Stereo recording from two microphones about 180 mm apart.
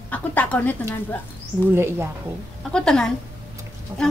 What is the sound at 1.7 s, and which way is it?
Speech, 15° right (ahead or behind).